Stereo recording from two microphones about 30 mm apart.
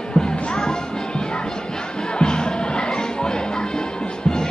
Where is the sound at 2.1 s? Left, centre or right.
Left.